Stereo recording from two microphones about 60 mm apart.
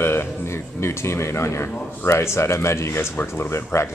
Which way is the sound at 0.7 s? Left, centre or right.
Left.